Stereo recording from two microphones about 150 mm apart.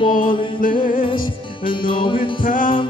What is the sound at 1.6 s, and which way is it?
Speech, 35° left (ahead or behind).